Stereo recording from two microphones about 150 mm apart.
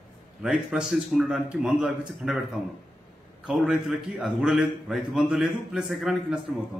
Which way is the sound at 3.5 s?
5° right (ahead or behind).